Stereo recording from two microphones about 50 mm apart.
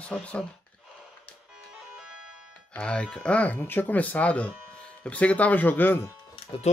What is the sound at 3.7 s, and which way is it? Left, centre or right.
Speech, left.